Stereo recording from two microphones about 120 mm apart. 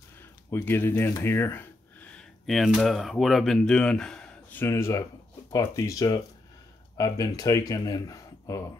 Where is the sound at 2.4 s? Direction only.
Centre (ahead or behind); by 8.6 s 30° left (ahead or behind).